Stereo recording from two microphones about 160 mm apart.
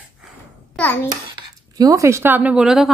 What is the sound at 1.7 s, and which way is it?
A woman's voice, 20° right (ahead or behind).